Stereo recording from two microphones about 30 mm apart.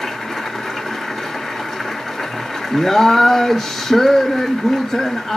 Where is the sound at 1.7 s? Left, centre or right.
Centre.